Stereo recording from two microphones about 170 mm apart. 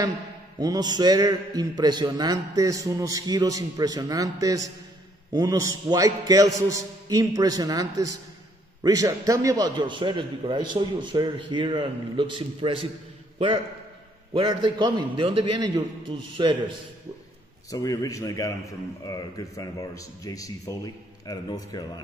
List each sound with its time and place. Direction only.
0.6 s a man's voice: 20° right (ahead or behind)
14.3 s a man's voice: 30° right (ahead or behind)
17.6 s speech: 20° left (ahead or behind)